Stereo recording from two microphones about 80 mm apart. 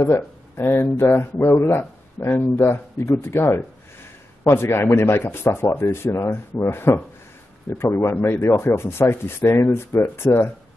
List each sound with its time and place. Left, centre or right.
0.0 s speech: left